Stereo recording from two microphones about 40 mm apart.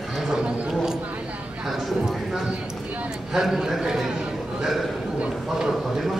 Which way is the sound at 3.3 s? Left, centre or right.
Centre.